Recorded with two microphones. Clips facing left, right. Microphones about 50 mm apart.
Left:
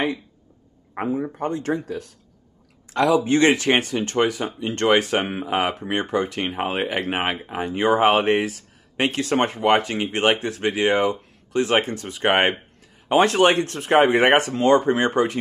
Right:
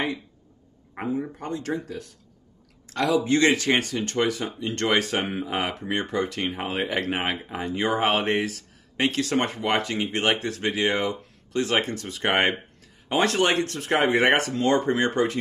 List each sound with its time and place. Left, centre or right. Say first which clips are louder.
0.9 s speech: left 4 dB; centre
1.4 s speech: left 5 dB; left
2.9 s speech: left 4 dB; left
14.8 s speech: left 3 dB; centre